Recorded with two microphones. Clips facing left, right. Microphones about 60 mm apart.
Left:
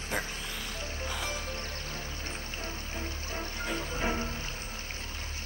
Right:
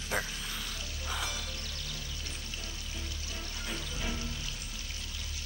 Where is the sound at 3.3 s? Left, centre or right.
Left.